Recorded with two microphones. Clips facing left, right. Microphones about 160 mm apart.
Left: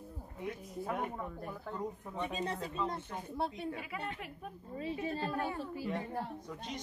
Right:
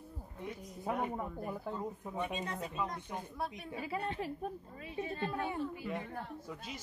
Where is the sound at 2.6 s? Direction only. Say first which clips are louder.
Left 1 dB; 10° right (ahead or behind).